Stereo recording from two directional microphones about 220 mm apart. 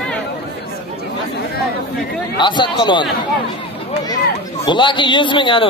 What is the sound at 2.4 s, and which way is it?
Speech, 20° left (ahead or behind).